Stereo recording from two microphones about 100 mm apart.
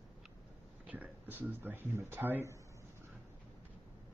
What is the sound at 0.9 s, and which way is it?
Speech, 15° right (ahead or behind).